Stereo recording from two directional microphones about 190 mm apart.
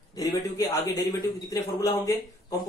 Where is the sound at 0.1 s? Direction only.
20° left (ahead or behind).